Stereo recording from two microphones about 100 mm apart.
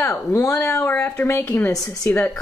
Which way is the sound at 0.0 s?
30° left (ahead or behind).